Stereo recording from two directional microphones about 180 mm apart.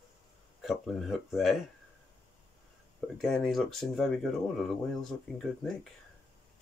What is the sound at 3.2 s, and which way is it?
Speech, centre (ahead or behind).